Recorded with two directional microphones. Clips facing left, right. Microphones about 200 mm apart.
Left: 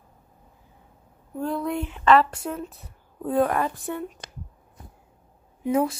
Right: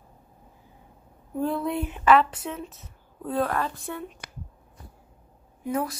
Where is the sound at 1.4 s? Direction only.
5° right (ahead or behind).